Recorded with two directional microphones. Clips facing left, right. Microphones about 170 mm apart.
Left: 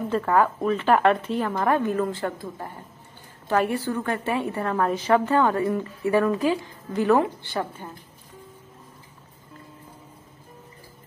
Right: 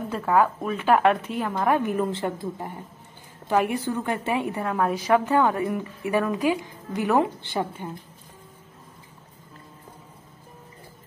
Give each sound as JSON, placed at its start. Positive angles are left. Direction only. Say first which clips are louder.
{"t": 0.1, "sound": "a woman's voice", "louder": "even", "side_deg": -5}